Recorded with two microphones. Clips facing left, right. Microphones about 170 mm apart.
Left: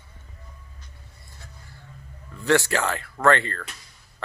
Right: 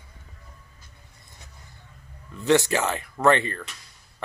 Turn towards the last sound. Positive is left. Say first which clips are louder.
# even
turn(degrees=-15)  # may be behind; listen again after turning